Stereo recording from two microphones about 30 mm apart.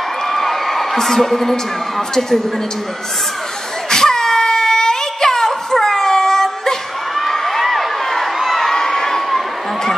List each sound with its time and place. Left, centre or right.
0.3 s a woman's voice: centre
3.9 s a sound: centre
7.2 s crowd: centre
8.7 s crowd: centre